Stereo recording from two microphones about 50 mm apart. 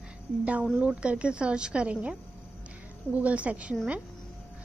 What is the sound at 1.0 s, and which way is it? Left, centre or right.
Speech, right.